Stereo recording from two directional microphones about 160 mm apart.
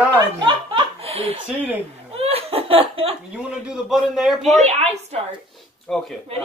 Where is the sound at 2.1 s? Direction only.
40° right (ahead or behind).